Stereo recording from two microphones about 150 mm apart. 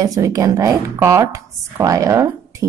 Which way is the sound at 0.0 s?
20° right (ahead or behind).